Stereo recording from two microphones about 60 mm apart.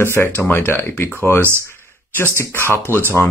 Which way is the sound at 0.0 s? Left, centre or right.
Left.